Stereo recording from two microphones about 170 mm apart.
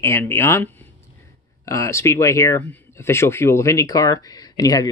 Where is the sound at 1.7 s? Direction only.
20° left (ahead or behind).